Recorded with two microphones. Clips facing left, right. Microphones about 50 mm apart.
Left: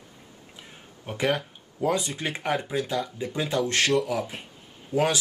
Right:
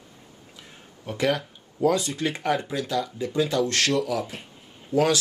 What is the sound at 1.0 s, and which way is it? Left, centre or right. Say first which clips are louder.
Speech: right 1 dB; left.